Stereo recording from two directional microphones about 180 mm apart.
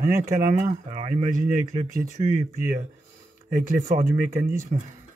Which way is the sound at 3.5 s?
45° right (ahead or behind).